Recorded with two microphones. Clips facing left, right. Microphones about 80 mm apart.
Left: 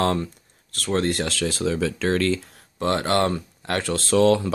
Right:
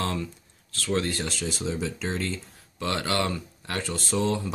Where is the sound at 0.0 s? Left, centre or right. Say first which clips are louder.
Left 7 dB; left.